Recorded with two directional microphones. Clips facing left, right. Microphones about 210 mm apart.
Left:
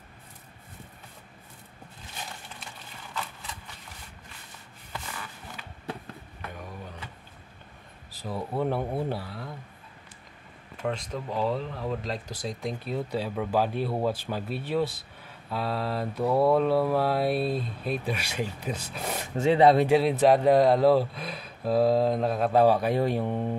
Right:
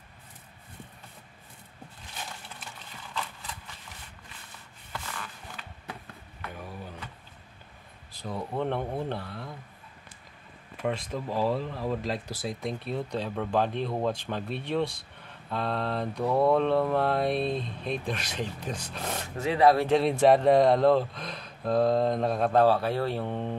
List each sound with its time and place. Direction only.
8.1 s speech: 5° left (ahead or behind)
10.8 s speech: 5° right (ahead or behind)
19.3 s speech: 25° left (ahead or behind)
19.9 s speech: 5° left (ahead or behind)